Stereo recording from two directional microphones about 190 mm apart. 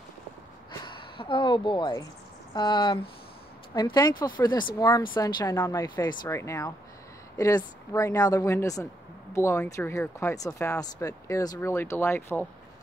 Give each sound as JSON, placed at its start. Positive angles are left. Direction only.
{"t": 0.8, "sound": "speech", "side_deg": 25}